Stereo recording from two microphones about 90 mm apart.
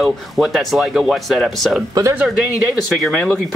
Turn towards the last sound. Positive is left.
turn(degrees=5)  # may be behind; listen again after turning